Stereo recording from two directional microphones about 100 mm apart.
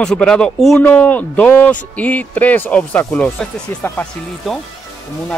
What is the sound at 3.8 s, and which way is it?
Speech, 20° left (ahead or behind).